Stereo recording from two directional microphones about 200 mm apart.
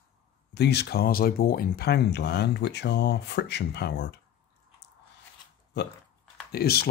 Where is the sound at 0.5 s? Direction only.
55° left (ahead or behind).